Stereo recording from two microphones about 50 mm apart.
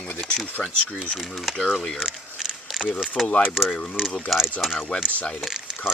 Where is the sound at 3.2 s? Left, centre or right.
Left.